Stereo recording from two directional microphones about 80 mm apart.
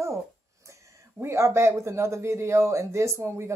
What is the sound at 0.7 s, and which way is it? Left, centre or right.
A woman's voice, right.